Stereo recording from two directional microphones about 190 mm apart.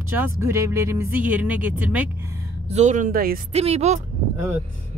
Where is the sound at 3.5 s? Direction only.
35° right (ahead or behind).